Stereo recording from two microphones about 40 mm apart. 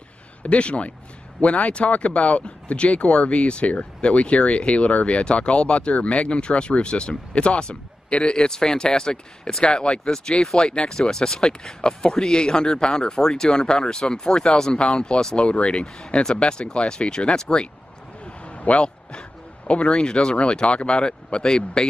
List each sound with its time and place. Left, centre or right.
0.4 s a man's voice: left
18.2 s a sound: left
19.7 s speech: left